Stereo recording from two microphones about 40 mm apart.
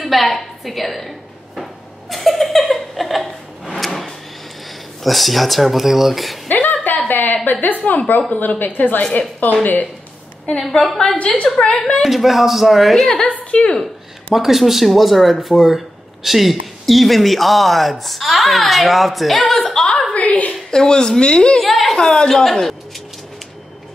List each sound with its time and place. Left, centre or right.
0.0 s a woman's voice: centre
1.6 s a sound: centre
5.0 s speech: centre
6.5 s a sound: left
7.8 s a woman's voice: left
8.4 s a woman's voice: left
10.7 s a woman's voice: centre
13.5 s a woman's voice: left
14.3 s speech: centre
19.7 s chuckle: centre
20.2 s a woman's voice: left
20.7 s a woman's voice: centre
21.6 s speech: centre
21.9 s a woman's voice: centre